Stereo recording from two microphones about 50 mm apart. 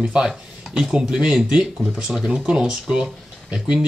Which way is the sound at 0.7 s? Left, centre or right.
Centre.